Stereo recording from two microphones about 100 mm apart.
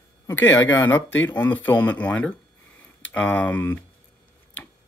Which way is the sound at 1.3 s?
20° left (ahead or behind).